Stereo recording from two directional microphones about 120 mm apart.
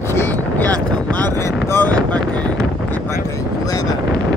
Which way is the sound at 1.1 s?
15° left (ahead or behind).